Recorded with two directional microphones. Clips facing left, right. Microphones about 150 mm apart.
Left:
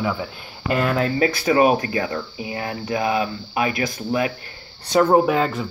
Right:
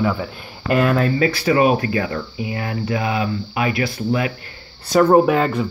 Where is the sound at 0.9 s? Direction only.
20° left (ahead or behind).